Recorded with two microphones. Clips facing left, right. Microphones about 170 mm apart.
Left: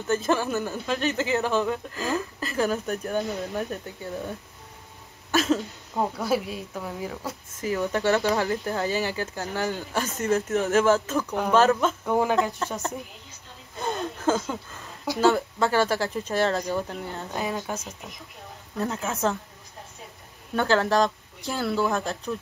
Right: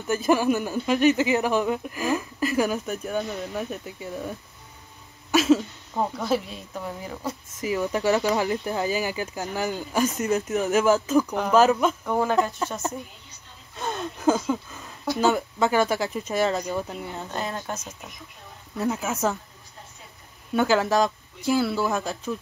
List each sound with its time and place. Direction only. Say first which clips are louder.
0.3 s speech: right 8 dB; 15° right (ahead or behind)
5.3 s cough: right 4 dB; 5° right (ahead or behind)
5.9 s speech: even; 5° left (ahead or behind)
7.6 s speech: right 1 dB; 10° right (ahead or behind)
12.0 s speech: left 1 dB; 10° left (ahead or behind)
12.6 s speech: right 1 dB; 10° right (ahead or behind)
14.2 s speech: right 4 dB; 10° right (ahead or behind)
17.3 s speech: left 2 dB; 10° left (ahead or behind)
18.8 s speech: right 2 dB; 5° right (ahead or behind)
20.5 s speech: right 1 dB; 10° right (ahead or behind)